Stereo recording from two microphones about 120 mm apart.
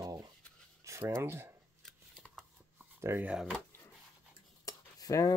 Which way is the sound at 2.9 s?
20° right (ahead or behind).